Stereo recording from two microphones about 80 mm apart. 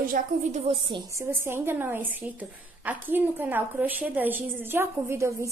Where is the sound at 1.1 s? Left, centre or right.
Right.